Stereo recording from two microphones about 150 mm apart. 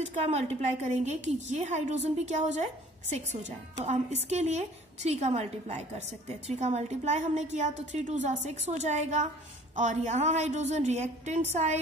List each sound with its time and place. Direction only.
0.1 s a woman's voice: 45° right (ahead or behind)